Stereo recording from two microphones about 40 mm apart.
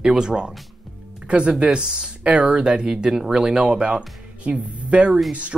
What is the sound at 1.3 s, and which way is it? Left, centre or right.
Speech, right.